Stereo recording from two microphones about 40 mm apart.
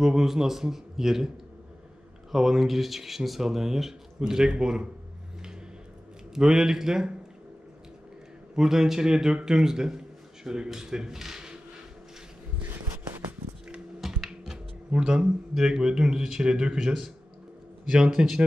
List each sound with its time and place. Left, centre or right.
0.0 s a man's voice: centre
2.3 s a man's voice: centre
6.3 s a man's voice: centre
8.5 s a man's voice: centre
12.6 s a sound: right
14.2 s music: centre
14.9 s a man's voice: right